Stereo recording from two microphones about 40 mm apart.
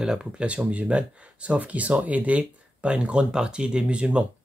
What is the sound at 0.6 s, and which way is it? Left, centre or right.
Speech, right.